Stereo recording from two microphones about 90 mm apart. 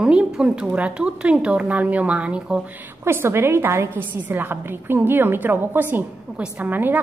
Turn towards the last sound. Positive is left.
turn(degrees=-20)  # may be behind; listen again after turning